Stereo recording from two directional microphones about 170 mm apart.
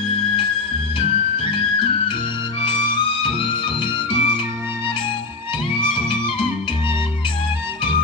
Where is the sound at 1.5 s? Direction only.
30° left (ahead or behind).